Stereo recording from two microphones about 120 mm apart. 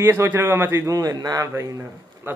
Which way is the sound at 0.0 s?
20° right (ahead or behind).